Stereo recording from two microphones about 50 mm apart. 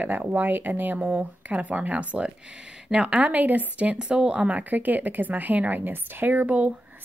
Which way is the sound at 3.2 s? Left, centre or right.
Right.